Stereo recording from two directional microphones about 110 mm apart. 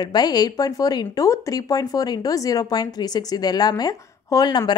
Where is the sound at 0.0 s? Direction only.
40° left (ahead or behind).